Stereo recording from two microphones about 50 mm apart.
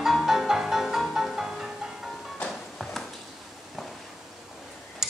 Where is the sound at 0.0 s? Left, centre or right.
Centre.